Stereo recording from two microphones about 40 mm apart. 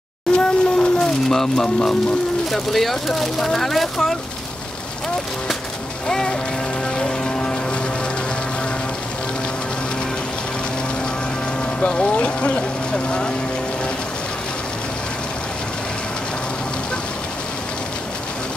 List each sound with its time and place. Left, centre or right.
0.3 s a sound: centre
2.5 s speech: centre
6.0 s speech: centre
7.0 s music: left
11.8 s speech: left